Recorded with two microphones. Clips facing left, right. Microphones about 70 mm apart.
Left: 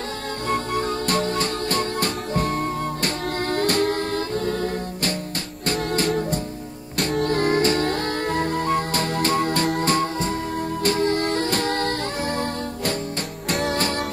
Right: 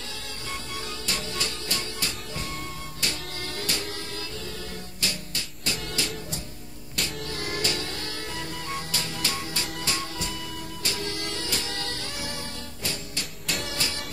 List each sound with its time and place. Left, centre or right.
0.5 s music: left
5.7 s music: left
13.5 s music: left